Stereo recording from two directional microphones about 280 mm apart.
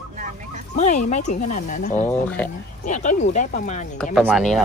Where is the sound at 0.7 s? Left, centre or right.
Left.